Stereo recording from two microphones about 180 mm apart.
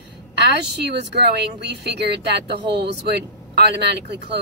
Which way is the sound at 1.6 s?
65° right (ahead or behind).